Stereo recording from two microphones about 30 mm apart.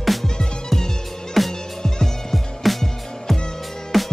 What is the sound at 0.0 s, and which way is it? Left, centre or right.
Music, centre.